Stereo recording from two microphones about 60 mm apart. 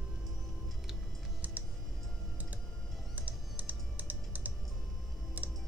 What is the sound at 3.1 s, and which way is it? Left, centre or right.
Typing, right.